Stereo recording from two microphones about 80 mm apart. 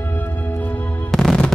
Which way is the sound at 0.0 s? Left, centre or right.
Left.